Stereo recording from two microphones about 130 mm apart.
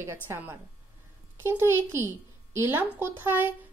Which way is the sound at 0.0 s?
20° right (ahead or behind).